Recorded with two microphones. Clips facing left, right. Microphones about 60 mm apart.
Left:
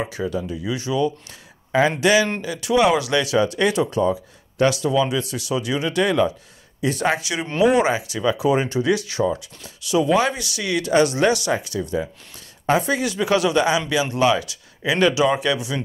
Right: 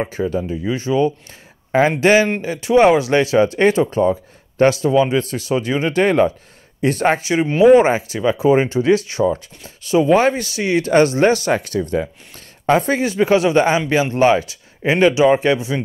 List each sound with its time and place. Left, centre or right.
0.0 s speech: right
11.5 s speech: right